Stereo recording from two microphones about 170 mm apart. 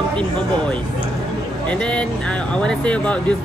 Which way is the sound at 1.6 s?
5° left (ahead or behind).